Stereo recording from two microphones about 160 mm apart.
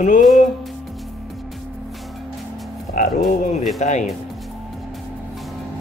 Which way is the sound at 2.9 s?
70° left (ahead or behind).